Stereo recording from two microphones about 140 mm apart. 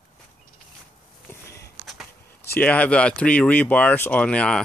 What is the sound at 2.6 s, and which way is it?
Speech, 10° left (ahead or behind).